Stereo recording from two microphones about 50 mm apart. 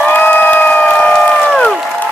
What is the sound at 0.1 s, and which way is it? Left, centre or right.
Crowd, left.